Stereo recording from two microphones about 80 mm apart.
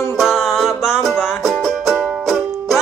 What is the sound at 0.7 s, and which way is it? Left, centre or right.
Music, left.